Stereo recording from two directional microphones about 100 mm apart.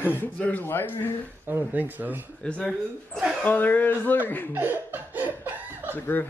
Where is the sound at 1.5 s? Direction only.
15° right (ahead or behind).